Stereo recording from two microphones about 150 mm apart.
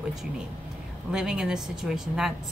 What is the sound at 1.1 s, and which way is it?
Speech, 5° right (ahead or behind).